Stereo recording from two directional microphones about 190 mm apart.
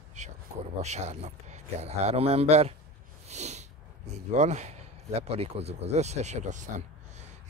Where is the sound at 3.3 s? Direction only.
35° right (ahead or behind).